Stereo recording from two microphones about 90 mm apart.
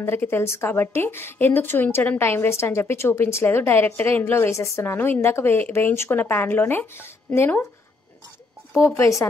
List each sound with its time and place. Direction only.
0.0 s a woman's voice: 25° left (ahead or behind)
8.7 s speech: 30° left (ahead or behind)